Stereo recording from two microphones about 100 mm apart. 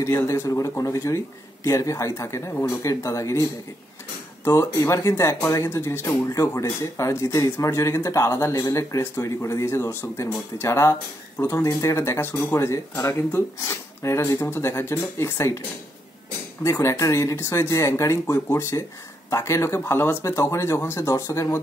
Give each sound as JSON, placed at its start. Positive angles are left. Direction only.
{"t": 0.0, "sound": "speech", "side_deg": 30}
{"t": 4.5, "sound": "speech", "side_deg": 30}
{"t": 16.6, "sound": "speech", "side_deg": 30}